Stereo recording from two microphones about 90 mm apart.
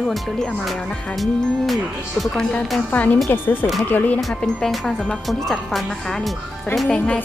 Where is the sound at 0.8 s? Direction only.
15° left (ahead or behind).